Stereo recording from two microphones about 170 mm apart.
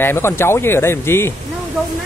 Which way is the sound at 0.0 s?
15° left (ahead or behind).